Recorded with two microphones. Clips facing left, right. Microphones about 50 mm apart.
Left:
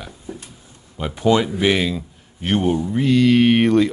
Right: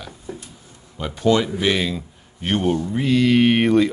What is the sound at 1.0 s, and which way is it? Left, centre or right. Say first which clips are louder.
Speech: left 1 dB; centre.